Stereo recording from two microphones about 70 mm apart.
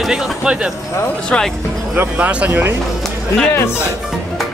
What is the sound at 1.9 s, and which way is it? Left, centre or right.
Speech, right.